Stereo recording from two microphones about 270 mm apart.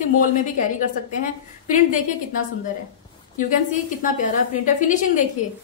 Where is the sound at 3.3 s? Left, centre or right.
Left.